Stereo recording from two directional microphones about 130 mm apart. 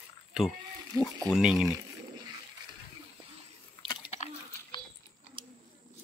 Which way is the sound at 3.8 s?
35° left (ahead or behind).